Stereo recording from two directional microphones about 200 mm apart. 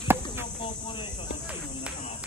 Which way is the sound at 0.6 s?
25° left (ahead or behind).